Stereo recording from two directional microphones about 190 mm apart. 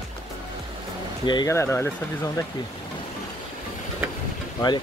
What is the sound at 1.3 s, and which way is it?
Speech, 20° left (ahead or behind).